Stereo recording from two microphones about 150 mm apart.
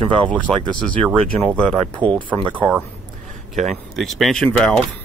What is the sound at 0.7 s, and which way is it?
Speech, 5° left (ahead or behind).